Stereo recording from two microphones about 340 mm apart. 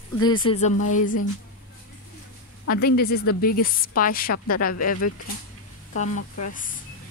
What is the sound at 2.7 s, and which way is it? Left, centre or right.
A woman's voice, left.